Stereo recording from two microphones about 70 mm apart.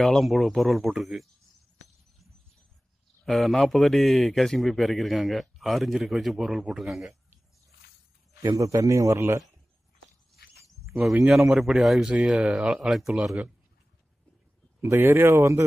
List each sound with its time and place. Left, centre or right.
0.0 s speech: centre
3.3 s speech: centre
8.5 s a man's voice: right
10.8 s a sound: centre
11.2 s speech: centre
12.1 s speech: centre
14.8 s speech: right